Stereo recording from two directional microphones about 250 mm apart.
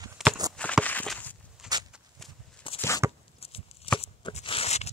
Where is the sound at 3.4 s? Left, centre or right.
Left.